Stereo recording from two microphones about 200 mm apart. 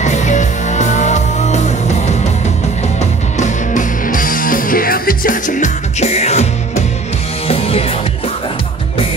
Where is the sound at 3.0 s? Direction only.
35° left (ahead or behind).